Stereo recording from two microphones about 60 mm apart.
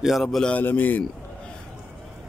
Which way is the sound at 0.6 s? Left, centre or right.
Left.